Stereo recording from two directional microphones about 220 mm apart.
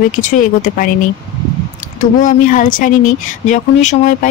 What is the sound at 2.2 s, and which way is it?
A woman's voice, 35° left (ahead or behind).